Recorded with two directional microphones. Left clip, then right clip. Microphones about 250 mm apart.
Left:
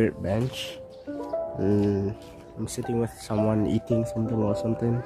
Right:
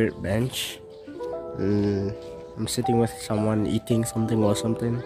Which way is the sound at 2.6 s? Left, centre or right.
Right.